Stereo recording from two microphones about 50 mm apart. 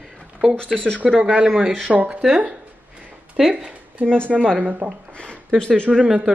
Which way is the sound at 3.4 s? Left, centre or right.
Centre.